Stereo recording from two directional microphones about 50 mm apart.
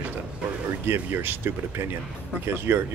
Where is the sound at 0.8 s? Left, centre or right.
Right.